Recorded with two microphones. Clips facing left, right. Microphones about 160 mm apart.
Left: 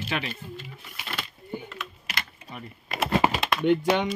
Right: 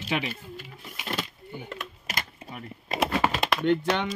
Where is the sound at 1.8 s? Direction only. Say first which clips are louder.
Right 1 dB; 45° right (ahead or behind).